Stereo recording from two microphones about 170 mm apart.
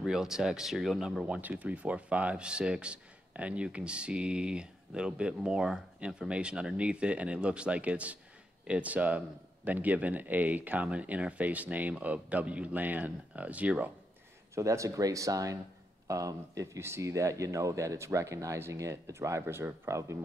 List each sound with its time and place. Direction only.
0.0 s speech: 5° right (ahead or behind)